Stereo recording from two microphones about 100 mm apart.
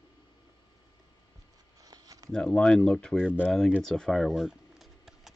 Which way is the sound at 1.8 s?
40° right (ahead or behind).